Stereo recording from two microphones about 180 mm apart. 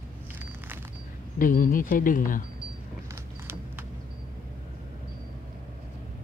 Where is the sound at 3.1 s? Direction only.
10° right (ahead or behind).